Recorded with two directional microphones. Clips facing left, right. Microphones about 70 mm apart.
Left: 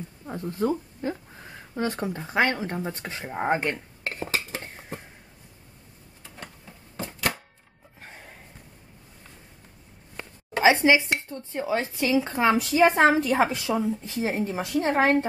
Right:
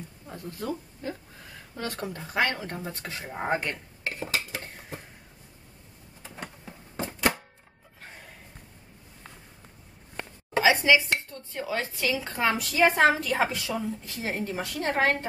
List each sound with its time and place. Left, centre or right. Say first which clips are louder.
0.3 s speech: left 8 dB; left
6.2 s typewriter: right 3 dB; centre
10.6 s speech: left 2 dB; left